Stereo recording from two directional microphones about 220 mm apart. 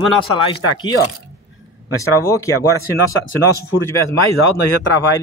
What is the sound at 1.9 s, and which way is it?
Speech, 15° left (ahead or behind).